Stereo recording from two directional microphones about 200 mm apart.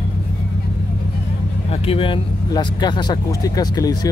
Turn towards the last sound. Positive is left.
turn(degrees=20)  # may be behind; listen again after turning